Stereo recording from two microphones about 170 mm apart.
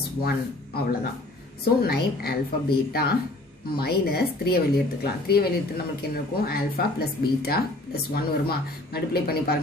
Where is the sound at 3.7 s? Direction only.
70° left (ahead or behind).